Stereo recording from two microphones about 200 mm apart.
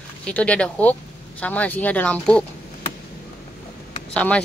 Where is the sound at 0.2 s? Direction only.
5° left (ahead or behind).